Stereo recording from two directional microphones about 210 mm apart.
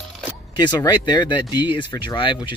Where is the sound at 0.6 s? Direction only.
20° left (ahead or behind).